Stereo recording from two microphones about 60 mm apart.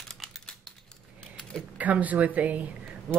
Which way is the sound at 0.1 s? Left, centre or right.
Centre.